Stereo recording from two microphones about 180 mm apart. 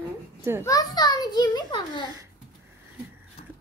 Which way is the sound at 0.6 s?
20° left (ahead or behind).